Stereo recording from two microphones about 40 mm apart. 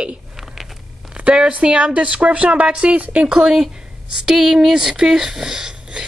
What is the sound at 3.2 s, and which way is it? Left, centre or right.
Speech, right.